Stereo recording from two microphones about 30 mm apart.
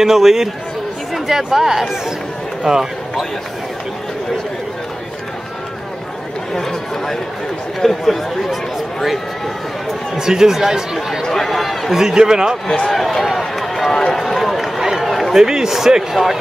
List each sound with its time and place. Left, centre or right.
0.0 s speech: centre
6.5 s chatter: centre
7.8 s speech: centre
10.1 s speech: centre
11.3 s speech: centre
11.9 s a man's voice: centre
12.6 s speech: left
12.9 s speech: centre
13.7 s speech: centre
15.0 s a sound: centre
15.3 s a man's voice: centre